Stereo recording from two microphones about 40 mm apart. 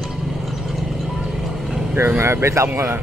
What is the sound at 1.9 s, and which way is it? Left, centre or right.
Speech, right.